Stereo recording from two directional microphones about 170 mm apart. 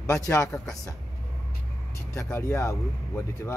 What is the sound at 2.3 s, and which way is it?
Speech, 15° left (ahead or behind).